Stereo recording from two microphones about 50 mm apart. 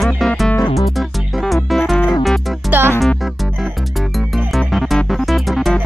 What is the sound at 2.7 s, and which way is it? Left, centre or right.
Music, right.